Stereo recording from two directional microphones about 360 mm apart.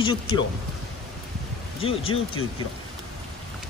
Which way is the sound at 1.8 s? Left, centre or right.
Centre.